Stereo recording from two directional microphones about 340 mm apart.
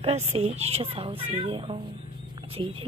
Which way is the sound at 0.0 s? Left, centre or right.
Centre.